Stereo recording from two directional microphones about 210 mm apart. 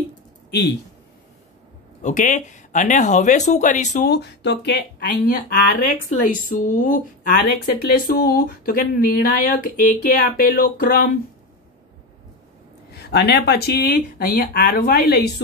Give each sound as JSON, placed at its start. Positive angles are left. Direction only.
{"t": 2.0, "sound": "speech", "side_deg": 35}
{"t": 4.1, "sound": "speech", "side_deg": 50}
{"t": 12.9, "sound": "speech", "side_deg": 50}